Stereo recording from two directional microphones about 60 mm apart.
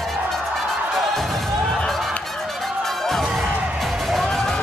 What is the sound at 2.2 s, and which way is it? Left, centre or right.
Music, centre.